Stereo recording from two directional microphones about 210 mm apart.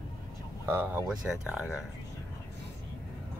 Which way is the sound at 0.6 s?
10° right (ahead or behind).